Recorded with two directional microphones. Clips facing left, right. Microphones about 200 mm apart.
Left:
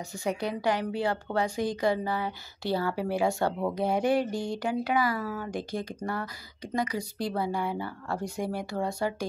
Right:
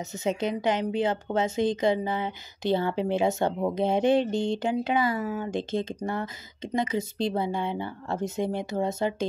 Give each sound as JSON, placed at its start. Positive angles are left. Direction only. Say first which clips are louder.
{"t": 0.1, "sound": "a woman's voice", "louder": "right 3 dB", "side_deg": -20}